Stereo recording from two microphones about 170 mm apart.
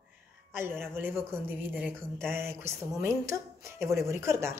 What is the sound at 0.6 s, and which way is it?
A woman's voice, 15° right (ahead or behind).